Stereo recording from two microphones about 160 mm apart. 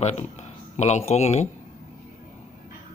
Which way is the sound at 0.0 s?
45° left (ahead or behind).